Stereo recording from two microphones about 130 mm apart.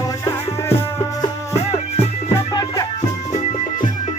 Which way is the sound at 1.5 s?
50° left (ahead or behind).